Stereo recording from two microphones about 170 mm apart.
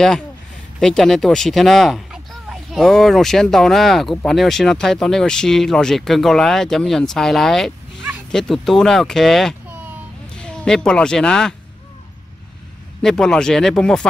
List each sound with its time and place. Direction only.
0.7 s speech: centre (ahead or behind)
13.0 s speech: 5° left (ahead or behind)